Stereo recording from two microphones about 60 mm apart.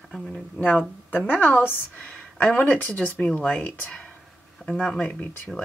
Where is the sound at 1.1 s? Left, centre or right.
Left.